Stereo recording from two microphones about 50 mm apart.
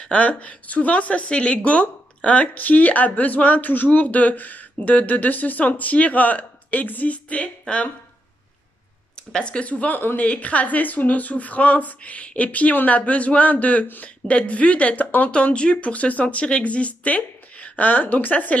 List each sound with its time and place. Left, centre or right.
0.0 s speech: left
9.1 s speech: centre; by 18.6 s left